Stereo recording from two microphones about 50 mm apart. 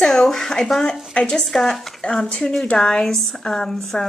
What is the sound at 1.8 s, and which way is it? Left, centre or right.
A woman's voice, centre.